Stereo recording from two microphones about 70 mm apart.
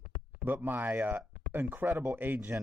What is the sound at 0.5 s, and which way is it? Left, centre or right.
Speech, right.